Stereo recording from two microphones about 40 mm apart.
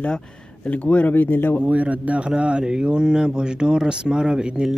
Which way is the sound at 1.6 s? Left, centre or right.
Right.